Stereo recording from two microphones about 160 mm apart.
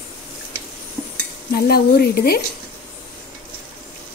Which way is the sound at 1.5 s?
80° left.